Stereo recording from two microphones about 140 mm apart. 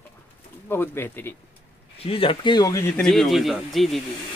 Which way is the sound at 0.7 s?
15° left (ahead or behind).